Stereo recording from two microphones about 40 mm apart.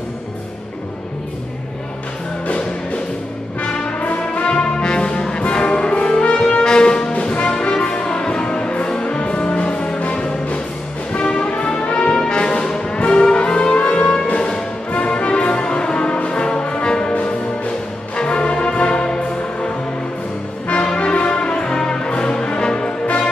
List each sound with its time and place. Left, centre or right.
4.0 s brass instrument: left
6.5 s music: left
15.1 s brass instrument: left
18.1 s brass instrument: left
20.6 s brass instrument: left